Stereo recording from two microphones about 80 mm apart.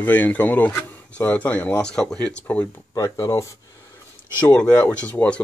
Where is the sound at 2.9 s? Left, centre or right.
Left.